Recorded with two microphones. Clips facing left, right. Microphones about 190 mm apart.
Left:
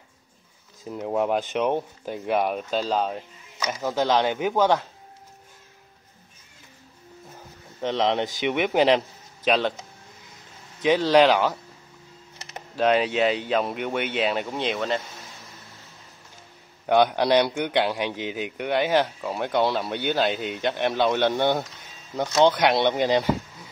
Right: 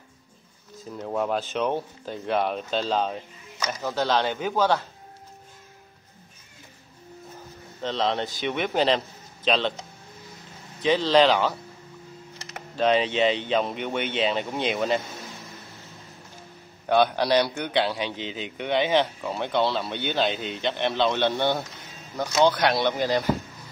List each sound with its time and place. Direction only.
0.8 s a man's voice: 15° left (ahead or behind)
7.8 s a man's voice: 15° left (ahead or behind)
10.8 s a man's voice: 10° left (ahead or behind)
12.7 s speech: 5° left (ahead or behind)
16.9 s a man's voice: 15° left (ahead or behind)